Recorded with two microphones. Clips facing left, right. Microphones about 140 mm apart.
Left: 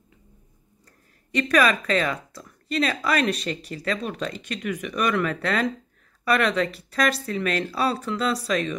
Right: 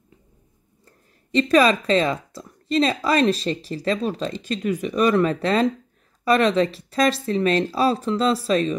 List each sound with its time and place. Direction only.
0.8 s speech: 25° right (ahead or behind)